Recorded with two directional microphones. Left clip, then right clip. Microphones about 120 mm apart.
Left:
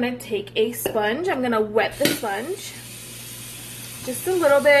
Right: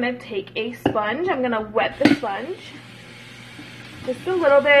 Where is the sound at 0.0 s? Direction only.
25° left (ahead or behind).